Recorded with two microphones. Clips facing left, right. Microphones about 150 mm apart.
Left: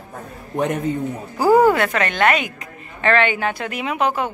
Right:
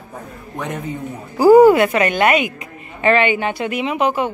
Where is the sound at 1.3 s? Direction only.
10° right (ahead or behind).